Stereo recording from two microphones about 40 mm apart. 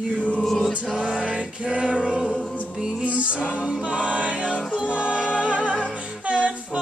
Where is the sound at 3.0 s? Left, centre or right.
Right.